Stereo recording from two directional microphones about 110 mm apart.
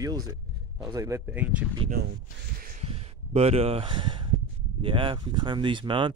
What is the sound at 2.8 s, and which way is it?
Speech, 70° right (ahead or behind).